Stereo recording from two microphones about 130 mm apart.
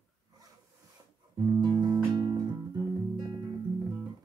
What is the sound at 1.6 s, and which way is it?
Music, 35° right (ahead or behind).